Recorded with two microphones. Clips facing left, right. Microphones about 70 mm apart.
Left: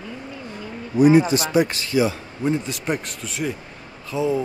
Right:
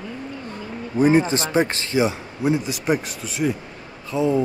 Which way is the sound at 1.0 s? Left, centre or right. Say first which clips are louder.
Left 2 dB; right.